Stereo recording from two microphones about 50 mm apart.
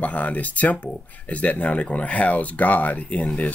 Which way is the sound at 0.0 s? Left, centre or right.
Left.